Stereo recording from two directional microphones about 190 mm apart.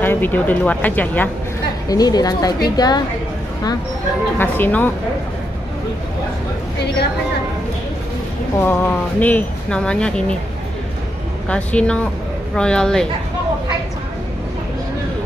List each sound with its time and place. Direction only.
0.0 s speech: 10° left (ahead or behind)
1.9 s a woman's voice: 20° left (ahead or behind)
4.4 s speech: 10° left (ahead or behind)
8.5 s speech: 10° left (ahead or behind)
11.4 s speech: 5° left (ahead or behind)